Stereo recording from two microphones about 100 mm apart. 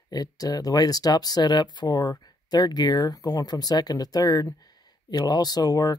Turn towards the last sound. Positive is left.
turn(degrees=40)  # may be behind; listen again after turning